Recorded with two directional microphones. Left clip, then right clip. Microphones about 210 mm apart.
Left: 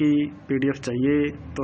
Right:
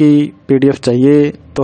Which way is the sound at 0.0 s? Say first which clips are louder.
Right 11 dB; 65° right (ahead or behind).